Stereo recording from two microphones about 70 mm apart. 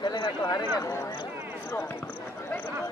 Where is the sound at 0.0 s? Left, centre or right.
Left.